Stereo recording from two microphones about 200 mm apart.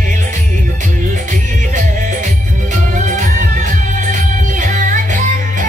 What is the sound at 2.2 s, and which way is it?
Music, 40° right (ahead or behind).